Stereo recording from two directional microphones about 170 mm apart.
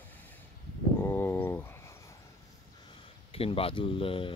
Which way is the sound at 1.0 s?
10° left (ahead or behind).